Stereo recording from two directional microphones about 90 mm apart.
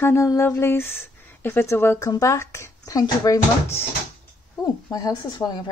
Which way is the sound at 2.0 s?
40° left (ahead or behind).